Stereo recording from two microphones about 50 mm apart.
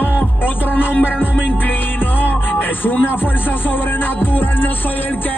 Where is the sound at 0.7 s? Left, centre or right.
Left.